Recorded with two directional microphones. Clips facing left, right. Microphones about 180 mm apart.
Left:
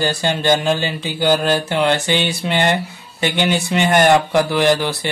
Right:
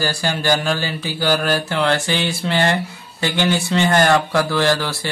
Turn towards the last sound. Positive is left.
turn(degrees=20)  # may be behind; listen again after turning